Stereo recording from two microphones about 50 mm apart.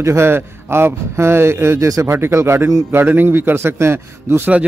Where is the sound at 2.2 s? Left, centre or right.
Right.